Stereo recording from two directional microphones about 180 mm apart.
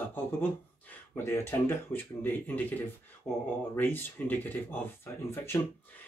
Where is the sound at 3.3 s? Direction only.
Centre (ahead or behind).